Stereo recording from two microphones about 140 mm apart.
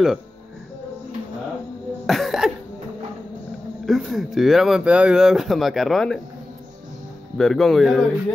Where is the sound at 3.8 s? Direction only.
Centre (ahead or behind).